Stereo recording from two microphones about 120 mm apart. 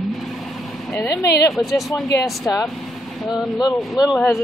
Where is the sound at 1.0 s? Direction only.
25° left (ahead or behind).